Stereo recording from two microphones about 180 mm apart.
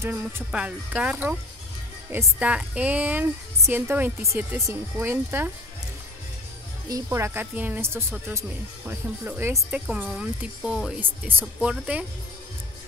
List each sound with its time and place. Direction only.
0.0 s a woman's voice: 10° right (ahead or behind)
6.9 s a woman's voice: 15° right (ahead or behind)